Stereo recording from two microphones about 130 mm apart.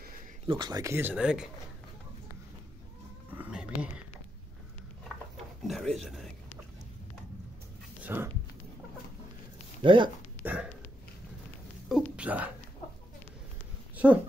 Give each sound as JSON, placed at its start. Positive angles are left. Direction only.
{"t": 0.5, "sound": "speech", "side_deg": -35}
{"t": 1.1, "sound": "speech", "side_deg": -5}
{"t": 3.3, "sound": "a sound", "side_deg": -10}
{"t": 5.6, "sound": "speech", "side_deg": 0}
{"t": 8.0, "sound": "a sound", "side_deg": -15}
{"t": 9.8, "sound": "speech", "side_deg": -40}
{"t": 10.4, "sound": "dog", "side_deg": -10}
{"t": 11.9, "sound": "speech", "side_deg": -10}
{"t": 13.9, "sound": "speech", "side_deg": -10}